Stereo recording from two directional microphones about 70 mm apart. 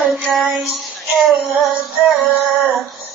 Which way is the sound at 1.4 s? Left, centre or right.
Centre.